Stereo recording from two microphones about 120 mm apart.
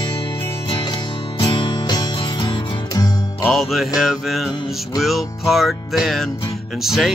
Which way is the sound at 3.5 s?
Centre (ahead or behind).